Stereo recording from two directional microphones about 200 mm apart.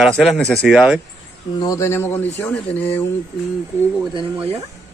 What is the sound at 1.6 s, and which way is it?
Speech, 15° left (ahead or behind).